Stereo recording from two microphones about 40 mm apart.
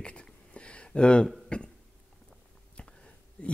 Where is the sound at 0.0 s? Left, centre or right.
Left.